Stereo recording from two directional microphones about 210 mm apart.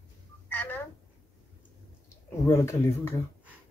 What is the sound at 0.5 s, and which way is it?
Telephone, 10° left (ahead or behind).